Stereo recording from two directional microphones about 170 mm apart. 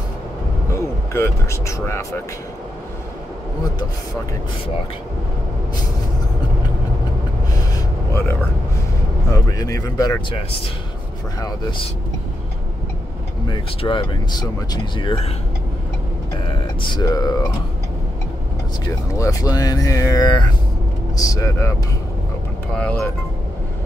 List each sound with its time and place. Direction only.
1.1 s speech: 15° left (ahead or behind)
7.7 s a sound: 15° left (ahead or behind)
9.3 s speech: 20° left (ahead or behind)
13.5 s speech: 25° left (ahead or behind)
16.4 s speech: 30° left (ahead or behind)
19.1 s speech: 20° left (ahead or behind)
22.7 s speech: 5° left (ahead or behind)